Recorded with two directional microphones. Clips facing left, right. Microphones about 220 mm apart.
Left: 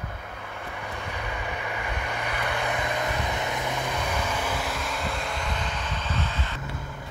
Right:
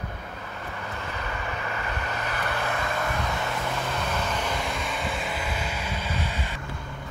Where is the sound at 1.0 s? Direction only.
15° left (ahead or behind); by 6.5 s 10° right (ahead or behind).